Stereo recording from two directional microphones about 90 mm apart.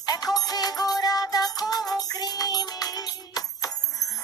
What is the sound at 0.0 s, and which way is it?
Music, 45° left (ahead or behind).